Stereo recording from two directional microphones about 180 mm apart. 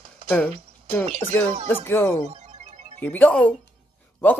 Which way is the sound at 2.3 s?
40° right (ahead or behind).